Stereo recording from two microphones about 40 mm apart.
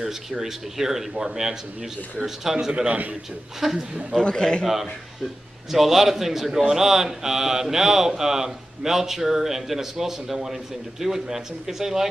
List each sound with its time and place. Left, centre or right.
0.0 s a man's voice: centre
2.9 s a man's voice: right
3.6 s a man's voice: centre
4.2 s a man's voice: left
5.7 s a man's voice: centre